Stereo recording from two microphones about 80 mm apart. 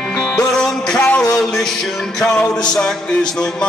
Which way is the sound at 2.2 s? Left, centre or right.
Centre.